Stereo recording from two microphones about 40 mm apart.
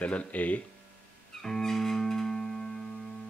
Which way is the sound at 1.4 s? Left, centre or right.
Centre.